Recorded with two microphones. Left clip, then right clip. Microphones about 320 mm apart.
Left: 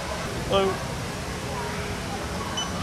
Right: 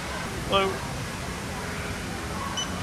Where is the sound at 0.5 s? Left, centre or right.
Centre.